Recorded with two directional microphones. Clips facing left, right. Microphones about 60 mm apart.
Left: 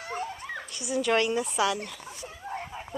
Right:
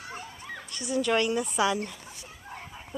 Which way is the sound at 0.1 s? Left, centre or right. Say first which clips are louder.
Left 8 dB; left.